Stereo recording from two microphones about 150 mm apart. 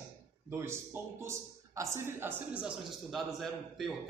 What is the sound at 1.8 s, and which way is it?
A man's voice, 15° right (ahead or behind).